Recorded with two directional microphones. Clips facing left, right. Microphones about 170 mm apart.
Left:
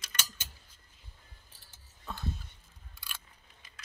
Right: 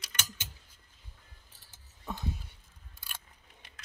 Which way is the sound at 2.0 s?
15° right (ahead or behind).